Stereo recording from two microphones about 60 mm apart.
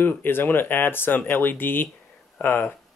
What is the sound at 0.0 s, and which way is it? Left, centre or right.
Speech, left.